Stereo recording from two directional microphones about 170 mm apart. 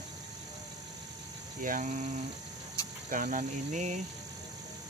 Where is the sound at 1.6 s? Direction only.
50° right (ahead or behind).